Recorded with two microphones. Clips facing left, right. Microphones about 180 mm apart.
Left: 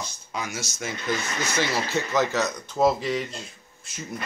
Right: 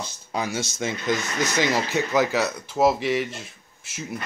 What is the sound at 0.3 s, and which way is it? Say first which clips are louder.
Speech: right 6 dB; 30° right (ahead or behind).